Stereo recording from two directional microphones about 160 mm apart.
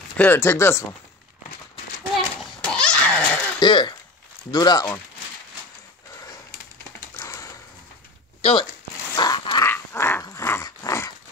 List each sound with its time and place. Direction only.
0.2 s speech: 15° left (ahead or behind)
2.1 s a sound: 5° left (ahead or behind)
3.5 s throat clearing: 30° left (ahead or behind)
4.5 s speech: 25° left (ahead or behind)
7.2 s a sound: 20° left (ahead or behind)
8.4 s speech: 35° left (ahead or behind)
8.9 s crumpling: 25° left (ahead or behind)
9.7 s dog: 15° left (ahead or behind)